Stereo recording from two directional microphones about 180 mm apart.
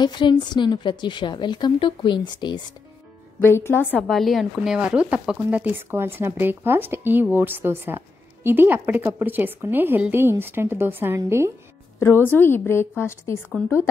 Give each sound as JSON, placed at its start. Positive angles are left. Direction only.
{"t": 0.0, "sound": "a woman's voice", "side_deg": 25}
{"t": 3.4, "sound": "a woman's voice", "side_deg": 15}
{"t": 3.9, "sound": "speech", "side_deg": 0}
{"t": 12.0, "sound": "a woman's voice", "side_deg": 15}